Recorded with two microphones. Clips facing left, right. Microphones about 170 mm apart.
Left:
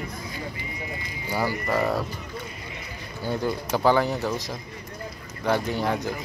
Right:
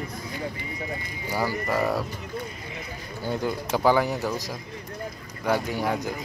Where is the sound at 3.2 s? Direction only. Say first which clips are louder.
Left 1 dB; 15° right (ahead or behind).